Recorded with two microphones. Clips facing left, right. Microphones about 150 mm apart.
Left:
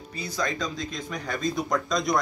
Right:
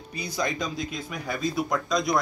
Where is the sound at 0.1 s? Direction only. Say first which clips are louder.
Right 1 dB; 15° right (ahead or behind).